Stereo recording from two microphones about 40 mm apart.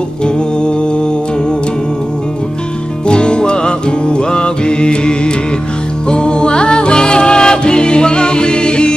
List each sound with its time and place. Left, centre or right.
3.1 s music: left